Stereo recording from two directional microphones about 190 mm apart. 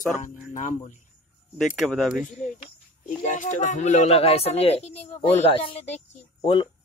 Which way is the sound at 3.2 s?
40° left (ahead or behind).